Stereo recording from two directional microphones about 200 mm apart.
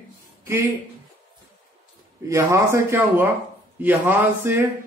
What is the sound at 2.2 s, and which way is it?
A man's voice, 15° right (ahead or behind).